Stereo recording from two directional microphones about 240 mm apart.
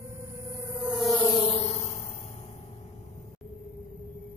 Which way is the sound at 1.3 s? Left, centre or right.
Left.